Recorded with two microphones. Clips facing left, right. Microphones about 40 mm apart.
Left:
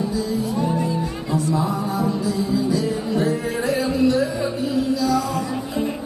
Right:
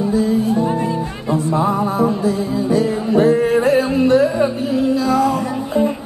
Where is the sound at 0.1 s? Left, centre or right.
Right.